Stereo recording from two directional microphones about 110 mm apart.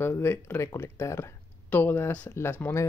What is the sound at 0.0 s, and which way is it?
Speech, 20° left (ahead or behind).